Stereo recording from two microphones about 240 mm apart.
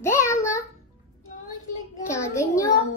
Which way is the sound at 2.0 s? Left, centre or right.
Centre.